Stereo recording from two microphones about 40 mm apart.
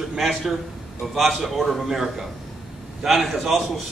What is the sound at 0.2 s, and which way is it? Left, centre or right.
Speech, centre.